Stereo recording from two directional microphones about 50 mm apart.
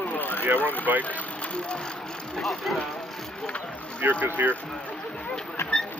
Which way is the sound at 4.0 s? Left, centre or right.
Right.